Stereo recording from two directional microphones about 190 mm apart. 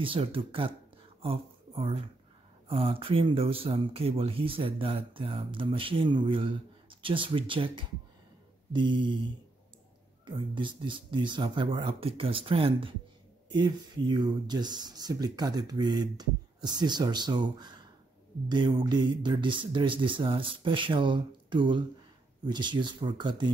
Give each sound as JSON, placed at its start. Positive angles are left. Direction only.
{"t": 0.0, "sound": "speech", "side_deg": -25}
{"t": 10.2, "sound": "speech", "side_deg": -25}